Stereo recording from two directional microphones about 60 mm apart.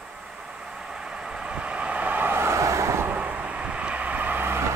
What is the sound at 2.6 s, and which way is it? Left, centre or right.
Vehicle, right.